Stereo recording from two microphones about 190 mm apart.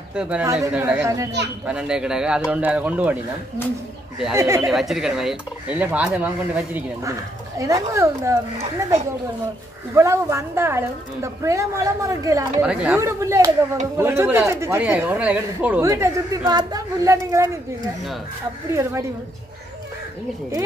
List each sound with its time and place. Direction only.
0.1 s a man's voice: 5° right (ahead or behind)
4.4 s speech: 15° right (ahead or behind)
4.6 s speech: centre (ahead or behind)
9.9 s speech: 15° right (ahead or behind)
12.6 s speech: 5° right (ahead or behind)
15.9 s speech: 20° right (ahead or behind)
18.7 s speech: 15° right (ahead or behind)